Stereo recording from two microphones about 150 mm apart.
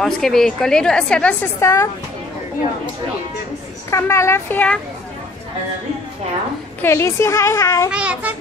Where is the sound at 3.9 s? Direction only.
20° left (ahead or behind).